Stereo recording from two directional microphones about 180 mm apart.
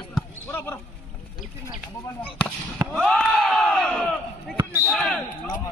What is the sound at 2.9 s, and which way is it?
Battle cry, 5° left (ahead or behind).